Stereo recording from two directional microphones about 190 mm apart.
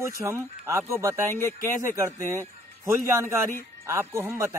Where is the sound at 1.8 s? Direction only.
15° right (ahead or behind).